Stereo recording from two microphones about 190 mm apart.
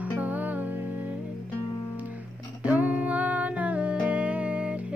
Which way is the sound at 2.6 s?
10° right (ahead or behind).